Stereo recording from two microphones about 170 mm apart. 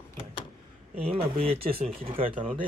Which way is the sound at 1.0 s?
35° right (ahead or behind).